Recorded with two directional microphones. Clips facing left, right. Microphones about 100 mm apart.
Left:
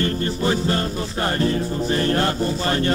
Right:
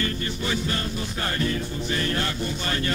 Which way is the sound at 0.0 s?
35° left (ahead or behind).